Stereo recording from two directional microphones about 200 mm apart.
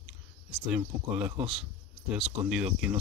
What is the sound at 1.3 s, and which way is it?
Speech, 30° right (ahead or behind).